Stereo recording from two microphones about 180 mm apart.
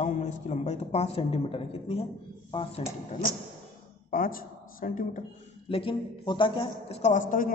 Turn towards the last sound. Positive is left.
turn(degrees=50)  # may be behind; listen again after turning